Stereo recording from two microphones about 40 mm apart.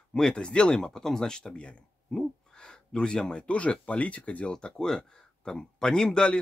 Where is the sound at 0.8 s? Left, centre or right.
Centre.